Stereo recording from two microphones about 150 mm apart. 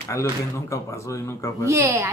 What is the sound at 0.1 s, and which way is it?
Speech, 20° left (ahead or behind).